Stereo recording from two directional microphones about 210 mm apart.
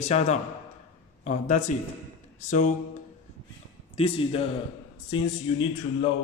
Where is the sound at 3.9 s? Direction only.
25° left (ahead or behind).